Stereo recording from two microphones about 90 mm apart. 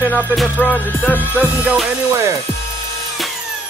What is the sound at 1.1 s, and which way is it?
Music, 15° right (ahead or behind).